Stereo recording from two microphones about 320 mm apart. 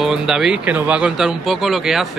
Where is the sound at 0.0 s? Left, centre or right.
Centre.